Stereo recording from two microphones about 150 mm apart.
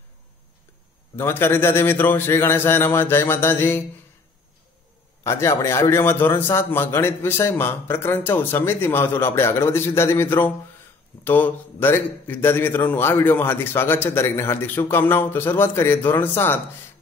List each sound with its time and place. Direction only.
1.1 s a man's voice: 15° left (ahead or behind)
5.2 s a man's voice: 20° left (ahead or behind)